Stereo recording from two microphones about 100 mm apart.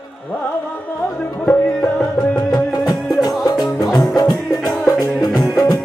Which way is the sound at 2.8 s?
40° left (ahead or behind).